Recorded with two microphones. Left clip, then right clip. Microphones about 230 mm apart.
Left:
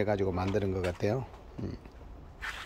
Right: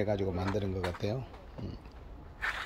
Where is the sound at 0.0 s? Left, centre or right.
Centre.